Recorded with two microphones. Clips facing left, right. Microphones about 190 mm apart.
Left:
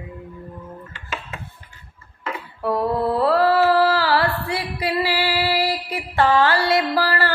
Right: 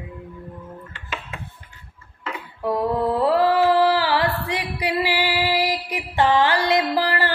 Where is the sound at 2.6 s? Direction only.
15° right (ahead or behind).